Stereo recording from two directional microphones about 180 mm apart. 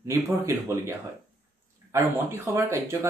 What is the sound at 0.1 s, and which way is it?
Speech, 20° right (ahead or behind).